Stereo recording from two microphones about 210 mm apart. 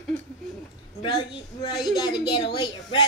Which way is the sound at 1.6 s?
20° left (ahead or behind).